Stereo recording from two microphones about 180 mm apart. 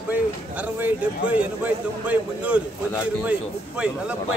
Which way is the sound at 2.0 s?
5° right (ahead or behind).